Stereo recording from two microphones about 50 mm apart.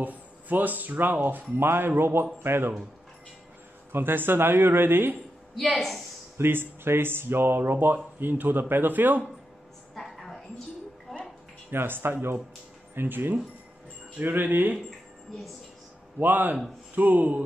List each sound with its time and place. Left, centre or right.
0.0 s speech: right
3.9 s speech: right
5.8 s a woman's voice: centre
6.3 s speech: right
9.9 s a sound: centre
11.7 s speech: right
16.2 s speech: right